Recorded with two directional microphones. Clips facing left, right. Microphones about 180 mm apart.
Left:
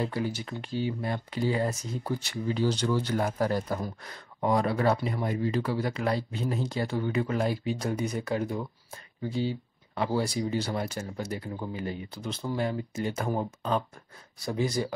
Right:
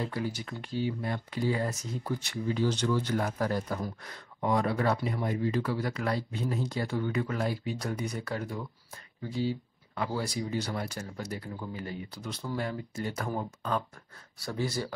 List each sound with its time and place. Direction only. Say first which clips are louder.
0.0 s speech: left 3 dB; 25° left (ahead or behind)